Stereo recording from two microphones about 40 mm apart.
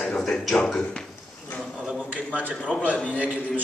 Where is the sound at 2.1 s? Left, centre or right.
Right.